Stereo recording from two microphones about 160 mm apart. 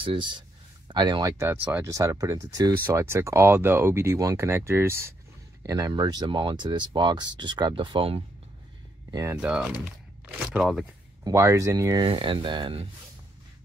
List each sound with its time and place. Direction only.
0.0 s speech: 30° right (ahead or behind)
9.1 s speech: 20° right (ahead or behind)
9.4 s speech: 5° right (ahead or behind)
11.2 s speech: 20° right (ahead or behind)